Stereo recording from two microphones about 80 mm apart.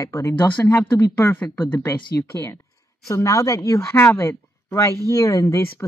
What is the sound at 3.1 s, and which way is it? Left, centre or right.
Speech, left.